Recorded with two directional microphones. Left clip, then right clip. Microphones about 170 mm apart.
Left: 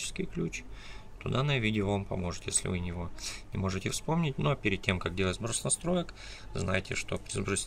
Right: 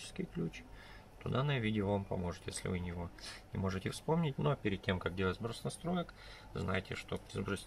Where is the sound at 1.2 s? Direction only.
Centre (ahead or behind).